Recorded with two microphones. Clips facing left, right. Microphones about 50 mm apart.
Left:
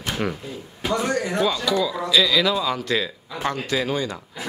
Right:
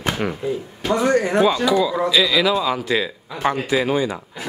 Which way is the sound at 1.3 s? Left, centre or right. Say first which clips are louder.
Right 5 dB; centre.